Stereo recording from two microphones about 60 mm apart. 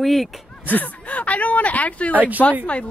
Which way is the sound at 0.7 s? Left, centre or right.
Left.